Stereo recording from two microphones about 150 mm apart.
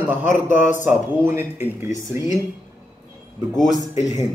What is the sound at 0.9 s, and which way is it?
Speech, 15° right (ahead or behind).